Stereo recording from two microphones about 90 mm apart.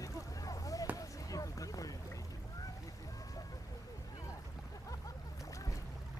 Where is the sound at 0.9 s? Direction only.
40° left (ahead or behind).